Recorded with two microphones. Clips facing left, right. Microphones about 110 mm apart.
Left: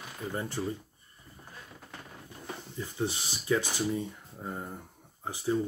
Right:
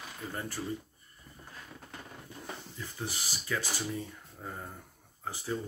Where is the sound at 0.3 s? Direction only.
20° left (ahead or behind).